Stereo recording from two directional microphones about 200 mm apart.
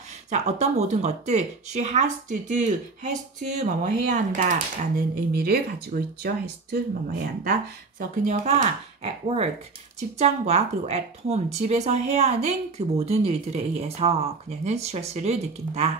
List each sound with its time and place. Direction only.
0.3 s speech: 35° right (ahead or behind)
8.3 s speech: 35° right (ahead or behind)